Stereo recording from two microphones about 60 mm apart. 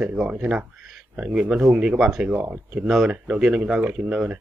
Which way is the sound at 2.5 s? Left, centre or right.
Right.